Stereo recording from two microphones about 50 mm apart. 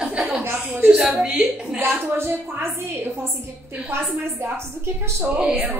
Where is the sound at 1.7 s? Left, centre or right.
Right.